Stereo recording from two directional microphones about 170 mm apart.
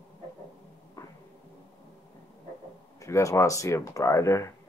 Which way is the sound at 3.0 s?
20° left (ahead or behind).